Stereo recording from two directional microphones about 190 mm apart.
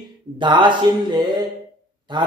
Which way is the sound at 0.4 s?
25° right (ahead or behind).